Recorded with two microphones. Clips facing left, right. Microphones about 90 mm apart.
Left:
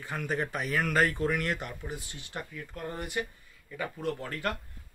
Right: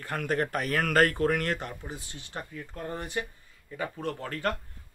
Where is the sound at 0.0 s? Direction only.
60° right (ahead or behind).